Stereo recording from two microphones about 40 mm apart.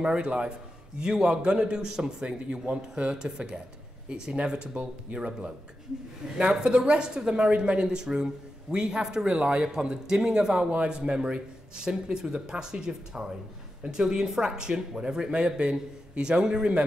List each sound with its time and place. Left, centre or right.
0.0 s a man's voice: right
7.5 s a man's voice: right
7.8 s a man's voice: centre
9.3 s speech: right
10.0 s speech: centre
10.6 s a man's voice: right